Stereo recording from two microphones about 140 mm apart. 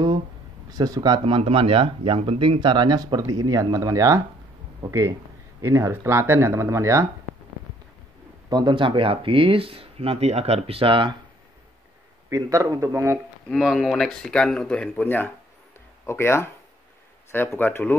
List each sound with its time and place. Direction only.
0.7 s speech: 25° right (ahead or behind)
5.6 s speech: 20° right (ahead or behind)
8.5 s speech: 30° right (ahead or behind)
12.3 s speech: 25° right (ahead or behind)
13.5 s speech: 5° left (ahead or behind)
17.6 s speech: 15° left (ahead or behind)